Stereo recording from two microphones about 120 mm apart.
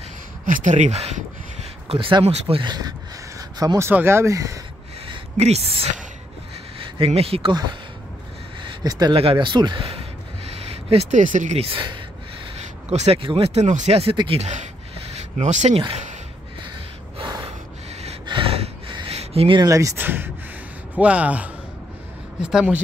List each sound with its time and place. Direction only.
0.5 s speech: 80° right; by 1.2 s 65° right (ahead or behind)
1.9 s speech: 45° right (ahead or behind); by 4.6 s 25° right (ahead or behind)
5.4 s a woman's voice: 60° right (ahead or behind)
7.1 s speech: 55° right (ahead or behind)
8.8 s speech: 30° right (ahead or behind)
9.1 s speech: 50° right (ahead or behind)
9.8 s a sound: 55° right (ahead or behind); by 11.6 s 90° right
11.6 s speech: 45° right (ahead or behind)
12.5 s speech: 60° right (ahead or behind)
14.1 s speech: 45° right (ahead or behind)
14.4 s speech: 80° right
18.2 s gasp: 45° right (ahead or behind)
19.6 s speech: 30° right (ahead or behind)
20.0 s speech: 15° right (ahead or behind)